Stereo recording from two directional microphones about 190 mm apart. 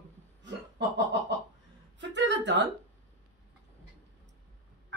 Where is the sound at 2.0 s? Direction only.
70° right (ahead or behind).